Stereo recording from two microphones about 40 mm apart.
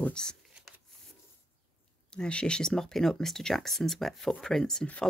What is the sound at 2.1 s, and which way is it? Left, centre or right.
Speech, left.